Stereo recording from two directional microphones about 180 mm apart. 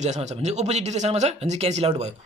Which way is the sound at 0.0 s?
40° right (ahead or behind).